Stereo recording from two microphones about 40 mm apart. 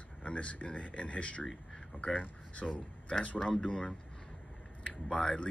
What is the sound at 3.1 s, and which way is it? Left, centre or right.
Speech, left.